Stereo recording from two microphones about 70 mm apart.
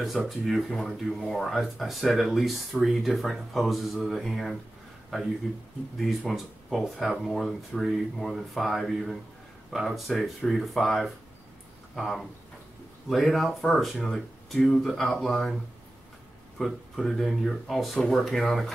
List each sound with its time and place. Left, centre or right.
0.0 s speech: centre